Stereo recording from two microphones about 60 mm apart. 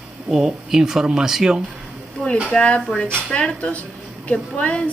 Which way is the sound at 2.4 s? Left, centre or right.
Centre.